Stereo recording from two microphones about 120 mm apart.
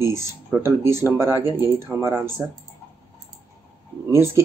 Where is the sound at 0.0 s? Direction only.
20° right (ahead or behind).